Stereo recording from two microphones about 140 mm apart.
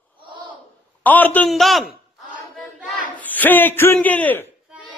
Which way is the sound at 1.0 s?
10° left (ahead or behind).